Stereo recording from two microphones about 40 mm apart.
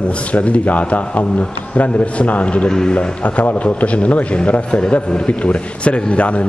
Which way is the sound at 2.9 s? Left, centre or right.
Left.